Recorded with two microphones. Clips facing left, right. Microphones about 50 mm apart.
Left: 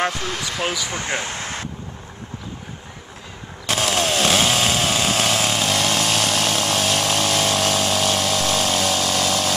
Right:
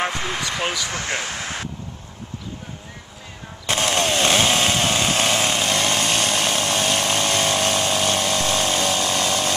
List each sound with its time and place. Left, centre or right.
0.0 s speech: centre
0.4 s speech: centre
0.8 s speech: left
3.6 s chainsaw: centre